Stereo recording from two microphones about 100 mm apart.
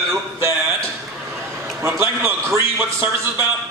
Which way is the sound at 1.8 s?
25° right (ahead or behind).